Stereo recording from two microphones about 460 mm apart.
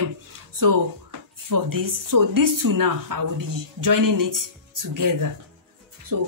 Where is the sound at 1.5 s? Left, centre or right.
Right.